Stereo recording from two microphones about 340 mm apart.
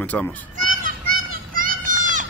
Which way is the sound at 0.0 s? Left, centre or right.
Centre.